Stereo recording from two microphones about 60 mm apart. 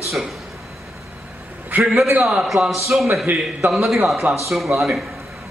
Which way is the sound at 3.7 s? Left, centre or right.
Centre.